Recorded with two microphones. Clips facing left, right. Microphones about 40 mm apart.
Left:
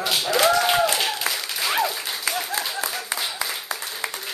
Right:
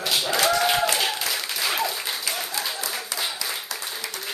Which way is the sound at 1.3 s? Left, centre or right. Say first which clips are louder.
Left 1 dB; centre.